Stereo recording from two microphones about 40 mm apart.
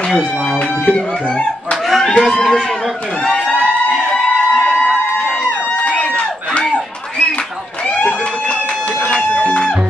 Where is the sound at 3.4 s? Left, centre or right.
Left.